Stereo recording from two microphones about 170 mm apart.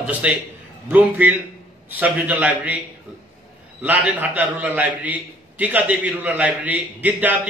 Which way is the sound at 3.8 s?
10° right (ahead or behind).